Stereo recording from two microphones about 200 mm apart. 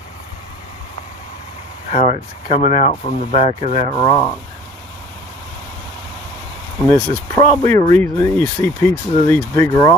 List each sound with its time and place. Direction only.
1.9 s speech: 35° left (ahead or behind)
3.9 s speech: 20° left (ahead or behind)
6.9 s speech: 10° left (ahead or behind)